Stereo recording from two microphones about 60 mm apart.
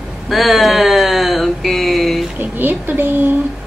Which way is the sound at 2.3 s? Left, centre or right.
Right.